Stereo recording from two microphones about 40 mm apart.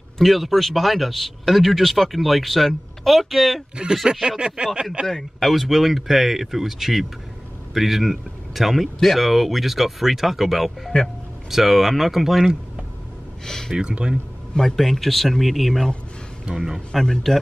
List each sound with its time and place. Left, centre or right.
0.2 s speech: centre
3.9 s a sound: centre
5.0 s speech: centre
5.5 s speech: centre
10.9 s speech: left
11.5 s speech: centre
13.5 s speech: centre
13.7 s speech: right
14.5 s speech: centre
16.5 s a sound: centre
16.9 s speech: centre